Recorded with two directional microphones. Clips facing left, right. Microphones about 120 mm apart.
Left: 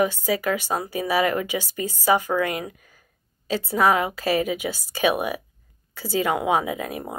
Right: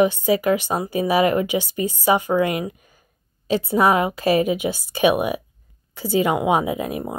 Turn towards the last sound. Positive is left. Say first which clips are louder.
# right 4 dB
turn(degrees=-15)  # may be behind; listen again after turning